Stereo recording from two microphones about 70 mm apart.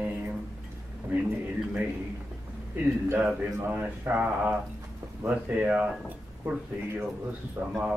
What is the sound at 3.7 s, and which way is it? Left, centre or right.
Mantra, right.